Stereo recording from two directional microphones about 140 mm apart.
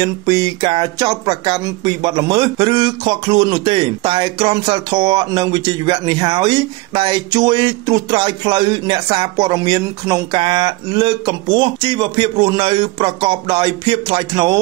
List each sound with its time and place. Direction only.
0.0 s speech: 30° right (ahead or behind)